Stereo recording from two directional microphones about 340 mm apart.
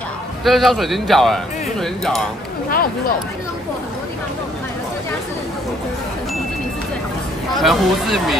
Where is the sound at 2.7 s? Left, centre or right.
Left.